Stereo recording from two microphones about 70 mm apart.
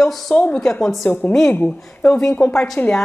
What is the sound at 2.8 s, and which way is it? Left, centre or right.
Speech, left.